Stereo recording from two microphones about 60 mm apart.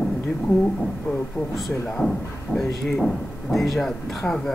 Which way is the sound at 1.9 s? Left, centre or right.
Centre.